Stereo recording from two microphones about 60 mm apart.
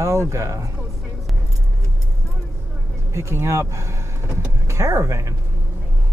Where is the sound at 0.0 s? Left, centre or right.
Right.